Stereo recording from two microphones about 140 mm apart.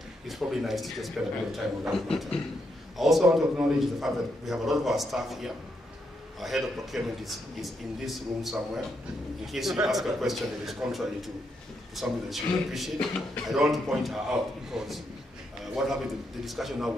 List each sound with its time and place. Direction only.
0.3 s a man's voice: centre (ahead or behind)